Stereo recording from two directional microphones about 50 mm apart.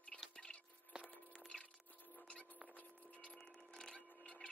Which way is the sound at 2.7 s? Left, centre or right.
Left.